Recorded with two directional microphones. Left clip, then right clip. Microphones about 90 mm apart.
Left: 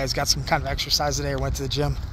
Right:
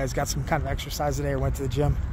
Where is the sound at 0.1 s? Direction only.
35° right (ahead or behind).